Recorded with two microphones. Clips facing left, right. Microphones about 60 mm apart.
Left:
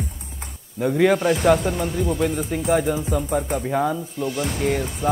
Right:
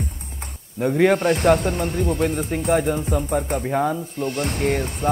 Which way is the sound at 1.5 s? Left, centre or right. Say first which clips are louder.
Even; centre.